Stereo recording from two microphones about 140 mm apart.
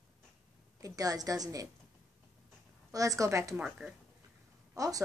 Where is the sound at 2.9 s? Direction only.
25° right (ahead or behind).